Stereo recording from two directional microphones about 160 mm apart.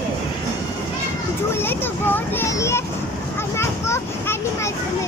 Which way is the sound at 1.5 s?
15° left (ahead or behind).